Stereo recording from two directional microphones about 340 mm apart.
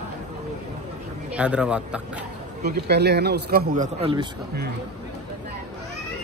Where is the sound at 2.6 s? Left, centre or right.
Right.